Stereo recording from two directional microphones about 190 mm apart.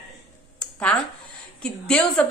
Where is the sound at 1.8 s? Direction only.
5° left (ahead or behind).